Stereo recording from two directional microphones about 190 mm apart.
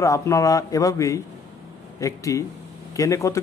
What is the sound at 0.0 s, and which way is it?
A man's voice, 15° left (ahead or behind).